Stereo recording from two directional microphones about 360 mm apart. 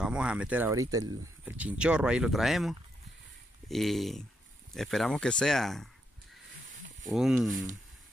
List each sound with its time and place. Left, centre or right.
0.0 s speech: centre
7.1 s speech: centre